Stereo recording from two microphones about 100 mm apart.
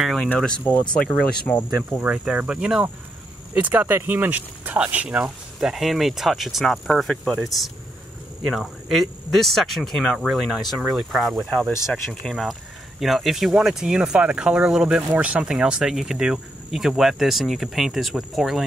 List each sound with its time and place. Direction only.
0.0 s a sound: centre (ahead or behind)
0.9 s speech: 10° left (ahead or behind)
2.0 s speech: 10° right (ahead or behind)